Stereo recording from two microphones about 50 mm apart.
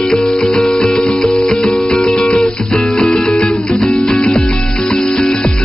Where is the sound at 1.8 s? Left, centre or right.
Centre.